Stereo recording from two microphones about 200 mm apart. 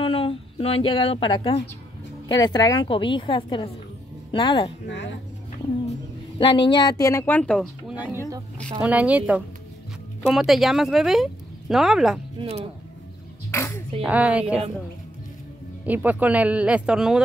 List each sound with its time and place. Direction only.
0.0 s a woman's voice: 25° left (ahead or behind)
4.8 s a woman's voice: 65° left (ahead or behind)
6.3 s speech: 25° left (ahead or behind); by 12.2 s centre (ahead or behind)
12.4 s speech: 30° right (ahead or behind)
13.5 s a sound: 10° left (ahead or behind)
14.0 s speech: 5° right (ahead or behind)
15.8 s speech: 10° right (ahead or behind)